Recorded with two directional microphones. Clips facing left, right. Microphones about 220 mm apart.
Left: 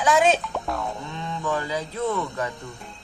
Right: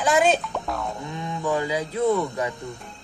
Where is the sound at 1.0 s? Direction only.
15° right (ahead or behind).